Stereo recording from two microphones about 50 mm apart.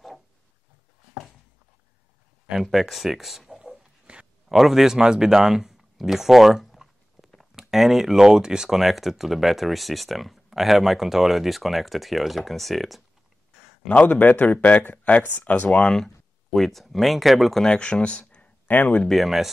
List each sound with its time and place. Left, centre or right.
2.5 s a sound: centre
4.5 s speech: centre
13.8 s speech: left
16.5 s speech: centre
17.6 s speech: centre
18.7 s speech: left
19.0 s speech: centre